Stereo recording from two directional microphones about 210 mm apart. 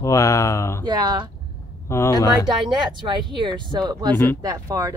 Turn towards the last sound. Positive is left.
turn(degrees=-15)  # may be behind; listen again after turning